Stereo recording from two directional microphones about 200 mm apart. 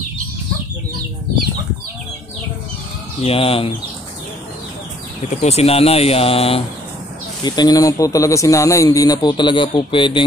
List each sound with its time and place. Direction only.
3.2 s a man's voice: 30° left (ahead or behind)
5.3 s a man's voice: 35° left (ahead or behind)